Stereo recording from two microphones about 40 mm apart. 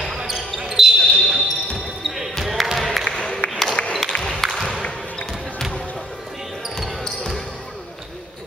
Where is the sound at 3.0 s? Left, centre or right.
Centre.